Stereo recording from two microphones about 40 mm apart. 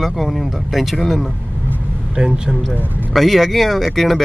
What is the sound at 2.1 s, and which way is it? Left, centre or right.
Speech, right.